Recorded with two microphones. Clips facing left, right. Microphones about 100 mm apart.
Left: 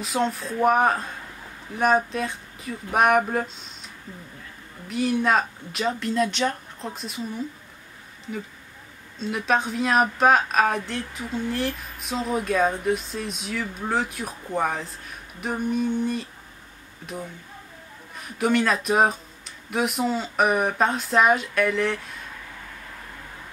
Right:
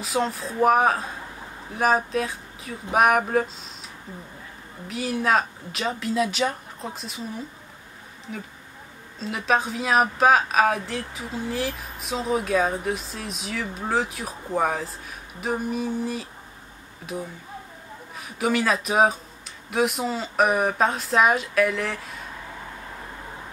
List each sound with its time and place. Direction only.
0.0 s a woman's voice: centre (ahead or behind)
4.8 s a woman's voice: centre (ahead or behind)
18.1 s a woman's voice: centre (ahead or behind)